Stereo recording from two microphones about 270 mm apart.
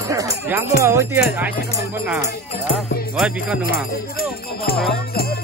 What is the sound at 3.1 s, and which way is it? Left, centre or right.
Music, centre.